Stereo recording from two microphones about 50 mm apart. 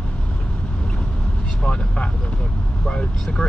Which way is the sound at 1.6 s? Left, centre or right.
Left.